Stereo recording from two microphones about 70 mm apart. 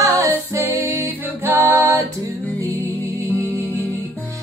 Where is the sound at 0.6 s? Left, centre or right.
Right.